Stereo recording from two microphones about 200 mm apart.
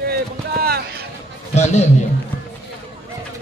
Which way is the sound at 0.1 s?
50° right (ahead or behind).